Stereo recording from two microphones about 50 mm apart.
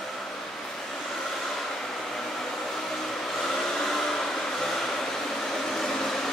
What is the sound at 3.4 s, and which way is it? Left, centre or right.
Hair dryer, centre.